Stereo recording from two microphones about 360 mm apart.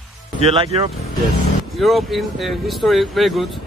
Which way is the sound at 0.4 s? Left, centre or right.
Centre.